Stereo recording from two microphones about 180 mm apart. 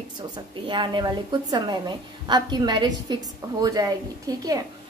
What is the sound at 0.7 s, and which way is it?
A woman's voice, 25° right (ahead or behind).